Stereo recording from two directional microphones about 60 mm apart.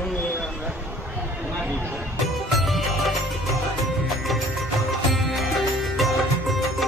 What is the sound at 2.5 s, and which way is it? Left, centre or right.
Music, centre.